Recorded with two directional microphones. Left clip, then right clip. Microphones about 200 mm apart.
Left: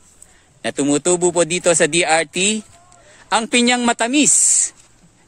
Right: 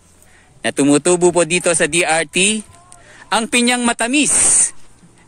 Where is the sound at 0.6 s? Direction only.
10° left (ahead or behind).